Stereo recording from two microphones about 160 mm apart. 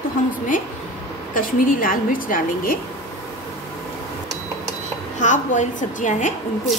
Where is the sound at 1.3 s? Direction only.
60° left (ahead or behind).